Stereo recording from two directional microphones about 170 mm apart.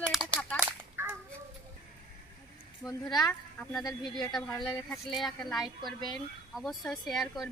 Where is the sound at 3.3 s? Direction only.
Centre (ahead or behind).